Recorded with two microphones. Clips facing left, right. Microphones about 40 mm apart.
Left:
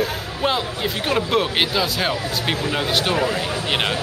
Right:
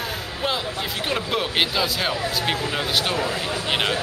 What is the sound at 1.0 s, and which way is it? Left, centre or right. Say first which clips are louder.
Speech: left 5 dB; centre.